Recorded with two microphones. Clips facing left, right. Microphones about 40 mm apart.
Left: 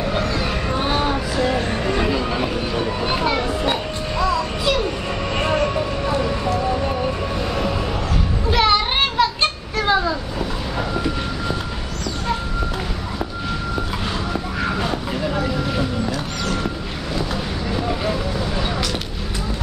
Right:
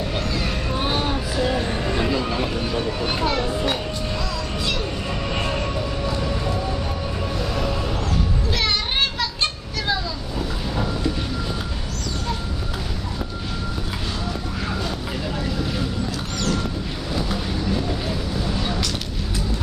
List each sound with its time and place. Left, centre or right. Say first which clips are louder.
0.1 s a sound: left 4 dB; centre
1.4 s music: left 2 dB; left
1.7 s music: left 3 dB; left
3.1 s children playing: left 3 dB; centre
4.2 s music: left 8 dB; left
5.4 s vehicle: left 5 dB; left
8.5 s children playing: left 9 dB; centre
15.3 s vehicle: left 4 dB; centre
18.6 s a sound: left 2 dB; centre